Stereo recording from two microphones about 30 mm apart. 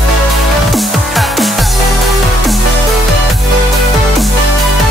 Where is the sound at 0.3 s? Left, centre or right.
Centre.